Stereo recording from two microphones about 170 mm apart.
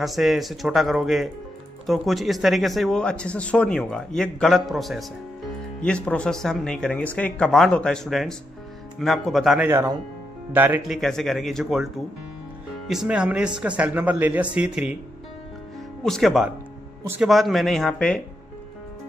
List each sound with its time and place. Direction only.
0.0 s speech: centre (ahead or behind)
9.7 s speech: 15° right (ahead or behind)
11.0 s speech: centre (ahead or behind)
16.0 s speech: centre (ahead or behind)